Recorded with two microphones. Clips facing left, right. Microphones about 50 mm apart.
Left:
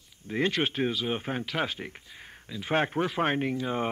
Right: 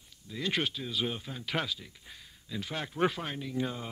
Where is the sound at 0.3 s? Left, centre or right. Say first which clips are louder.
Left 5 dB; left.